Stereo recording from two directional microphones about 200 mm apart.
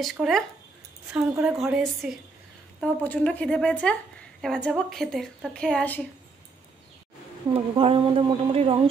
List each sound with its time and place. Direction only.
0.0 s a woman's voice: centre (ahead or behind)
1.3 s speech: 15° right (ahead or behind)
1.6 s a woman's voice: centre (ahead or behind)
7.5 s speech: 25° right (ahead or behind)